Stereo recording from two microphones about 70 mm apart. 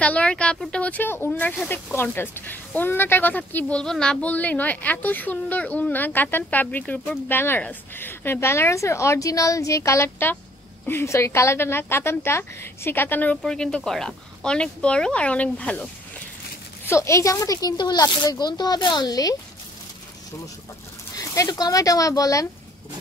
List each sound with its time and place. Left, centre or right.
0.0 s speech: centre
1.0 s a woman's voice: left
3.8 s a woman's voice: centre; by 13.4 s left
13.4 s speech: centre
16.8 s speech: left
21.2 s speech: left